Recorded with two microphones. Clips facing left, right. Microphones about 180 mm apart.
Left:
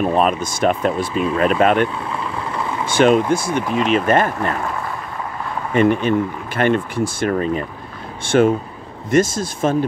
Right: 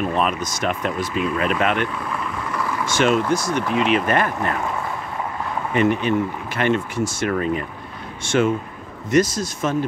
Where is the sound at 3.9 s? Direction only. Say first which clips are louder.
Left 3 dB; 30° left (ahead or behind).